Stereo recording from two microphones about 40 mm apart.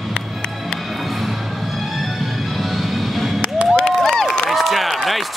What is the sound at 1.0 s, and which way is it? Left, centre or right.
Music, centre.